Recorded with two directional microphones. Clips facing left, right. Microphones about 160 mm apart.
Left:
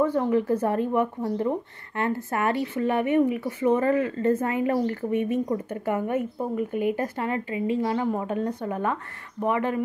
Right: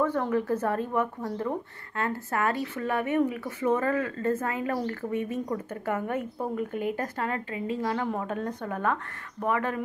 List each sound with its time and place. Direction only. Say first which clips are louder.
0.0 s a woman's voice: left 4 dB; 15° left (ahead or behind)